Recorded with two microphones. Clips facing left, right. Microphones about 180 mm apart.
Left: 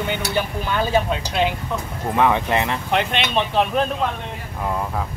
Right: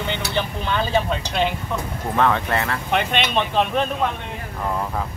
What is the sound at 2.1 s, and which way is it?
Speech, 15° left (ahead or behind).